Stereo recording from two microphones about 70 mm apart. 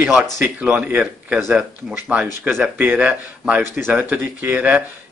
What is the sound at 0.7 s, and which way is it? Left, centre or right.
A man's voice, right.